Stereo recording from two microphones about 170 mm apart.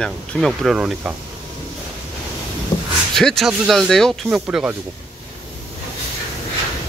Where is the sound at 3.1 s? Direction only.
5° left (ahead or behind).